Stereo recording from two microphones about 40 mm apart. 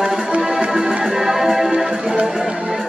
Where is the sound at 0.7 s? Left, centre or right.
Centre.